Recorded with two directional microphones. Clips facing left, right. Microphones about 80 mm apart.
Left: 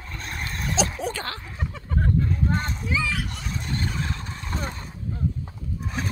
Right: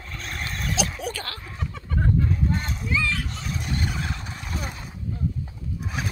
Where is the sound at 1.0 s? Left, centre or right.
Left.